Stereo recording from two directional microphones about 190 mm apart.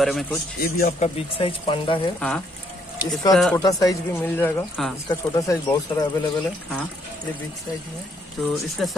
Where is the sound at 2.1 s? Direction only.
5° left (ahead or behind).